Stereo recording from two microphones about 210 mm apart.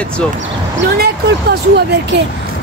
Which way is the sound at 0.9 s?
50° right (ahead or behind).